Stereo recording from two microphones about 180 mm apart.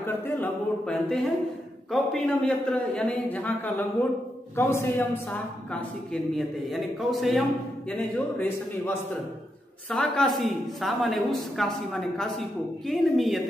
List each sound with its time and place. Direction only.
0.0 s a man's voice: 10° left (ahead or behind)
7.9 s a man's voice: 10° left (ahead or behind)